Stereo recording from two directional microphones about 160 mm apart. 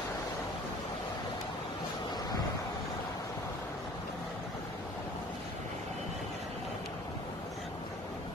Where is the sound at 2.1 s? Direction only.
25° left (ahead or behind).